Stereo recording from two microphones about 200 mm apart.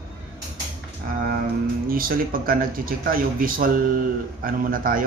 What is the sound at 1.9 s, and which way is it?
Speech, 45° right (ahead or behind).